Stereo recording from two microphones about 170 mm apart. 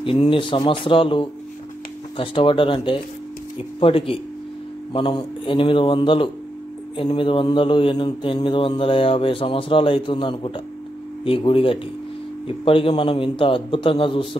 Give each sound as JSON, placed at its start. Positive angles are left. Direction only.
{"t": 0.0, "sound": "speech", "side_deg": 30}